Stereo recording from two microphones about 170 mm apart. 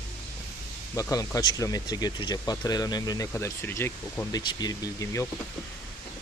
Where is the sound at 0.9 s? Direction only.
20° left (ahead or behind).